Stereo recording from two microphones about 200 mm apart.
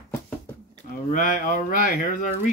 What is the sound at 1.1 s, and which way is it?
Speech, 40° left (ahead or behind).